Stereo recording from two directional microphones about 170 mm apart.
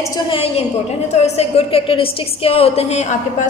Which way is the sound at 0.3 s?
35° left (ahead or behind).